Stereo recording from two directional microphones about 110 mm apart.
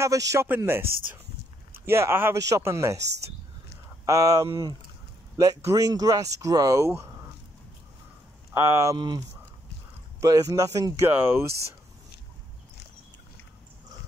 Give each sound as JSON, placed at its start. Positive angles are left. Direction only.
{"t": 0.0, "sound": "speech", "side_deg": -30}
{"t": 8.5, "sound": "speech", "side_deg": -25}
{"t": 8.9, "sound": "speech", "side_deg": -40}
{"t": 10.2, "sound": "speech", "side_deg": -30}
{"t": 11.1, "sound": "speech", "side_deg": -20}